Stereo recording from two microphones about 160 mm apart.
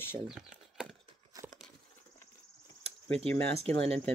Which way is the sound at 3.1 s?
40° right (ahead or behind).